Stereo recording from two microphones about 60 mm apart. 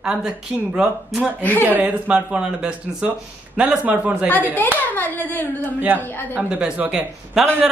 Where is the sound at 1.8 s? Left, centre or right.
Right.